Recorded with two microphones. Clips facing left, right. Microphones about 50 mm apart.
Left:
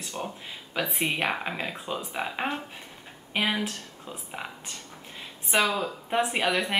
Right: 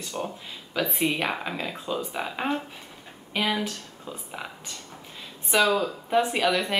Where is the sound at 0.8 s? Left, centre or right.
Left.